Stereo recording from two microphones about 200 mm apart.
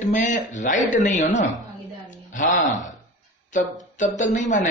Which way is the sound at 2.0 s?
40° left (ahead or behind).